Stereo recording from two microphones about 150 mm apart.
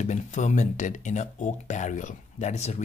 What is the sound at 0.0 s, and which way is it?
Speech, 50° left (ahead or behind).